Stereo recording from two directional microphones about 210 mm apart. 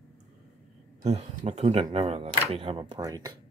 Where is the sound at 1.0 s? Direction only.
30° right (ahead or behind).